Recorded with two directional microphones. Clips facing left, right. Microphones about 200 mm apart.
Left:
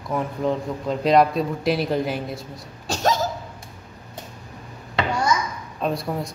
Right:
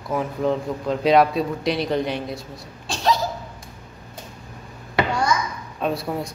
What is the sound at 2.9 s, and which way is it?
Cough, 45° left (ahead or behind).